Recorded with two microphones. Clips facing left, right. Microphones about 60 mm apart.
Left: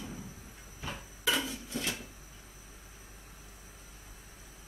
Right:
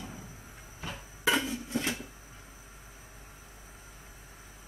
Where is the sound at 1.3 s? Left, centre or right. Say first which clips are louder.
Right 4 dB; right.